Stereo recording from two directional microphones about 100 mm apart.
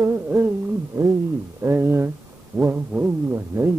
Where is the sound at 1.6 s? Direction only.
25° right (ahead or behind).